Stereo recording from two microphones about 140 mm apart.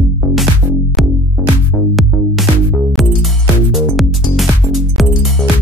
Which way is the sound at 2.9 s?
Centre (ahead or behind).